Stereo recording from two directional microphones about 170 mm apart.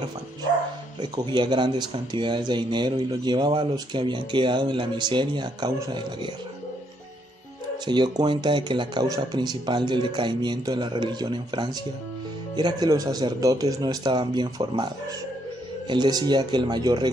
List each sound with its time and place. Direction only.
1.0 s speech: 25° right (ahead or behind)
7.8 s speech: 25° right (ahead or behind)
15.9 s speech: 25° right (ahead or behind)